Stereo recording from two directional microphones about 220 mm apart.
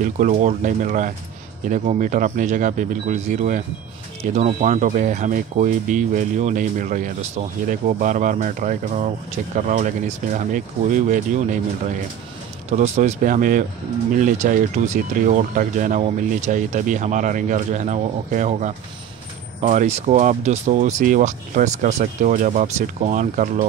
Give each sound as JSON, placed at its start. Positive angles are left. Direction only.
{"t": 0.0, "sound": "speech", "side_deg": -35}
{"t": 12.6, "sound": "speech", "side_deg": -30}